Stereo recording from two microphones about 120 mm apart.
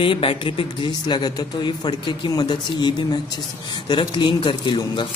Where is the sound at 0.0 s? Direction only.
45° left (ahead or behind).